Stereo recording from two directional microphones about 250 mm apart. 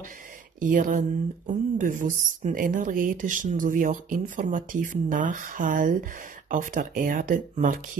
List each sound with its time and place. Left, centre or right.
0.6 s speech: right